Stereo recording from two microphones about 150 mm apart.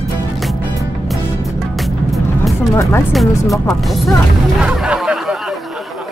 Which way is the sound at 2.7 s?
20° left (ahead or behind).